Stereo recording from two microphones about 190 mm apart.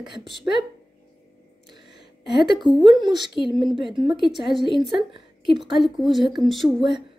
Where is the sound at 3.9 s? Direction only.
25° right (ahead or behind).